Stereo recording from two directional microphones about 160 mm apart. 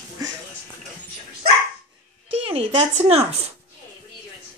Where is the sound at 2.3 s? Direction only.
35° right (ahead or behind).